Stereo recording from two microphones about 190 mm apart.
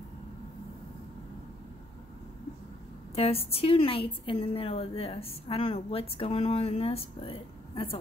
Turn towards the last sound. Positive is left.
turn(degrees=30)  # may be behind; listen again after turning